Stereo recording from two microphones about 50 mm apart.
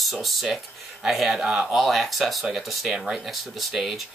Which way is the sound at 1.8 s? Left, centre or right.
Centre.